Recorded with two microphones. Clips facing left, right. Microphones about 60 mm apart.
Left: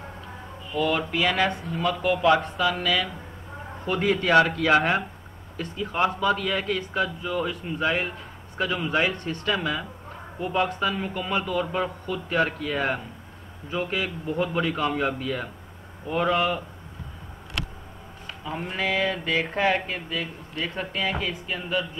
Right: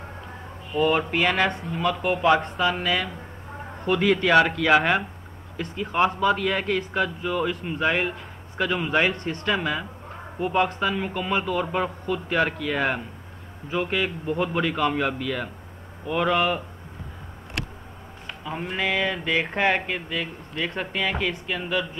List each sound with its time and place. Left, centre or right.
0.7 s a man's voice: right
3.8 s speech: right
5.6 s a man's voice: right
9.1 s speech: right
9.5 s a man's voice: right
18.7 s speech: right